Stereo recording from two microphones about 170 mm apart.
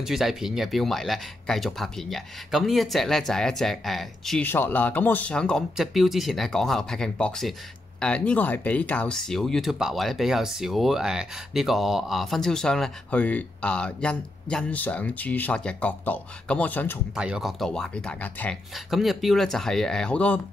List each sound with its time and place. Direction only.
0.0 s speech: centre (ahead or behind)
17.1 s speech: 5° right (ahead or behind)